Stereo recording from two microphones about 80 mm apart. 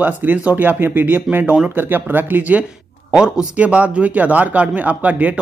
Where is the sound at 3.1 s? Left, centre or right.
Centre.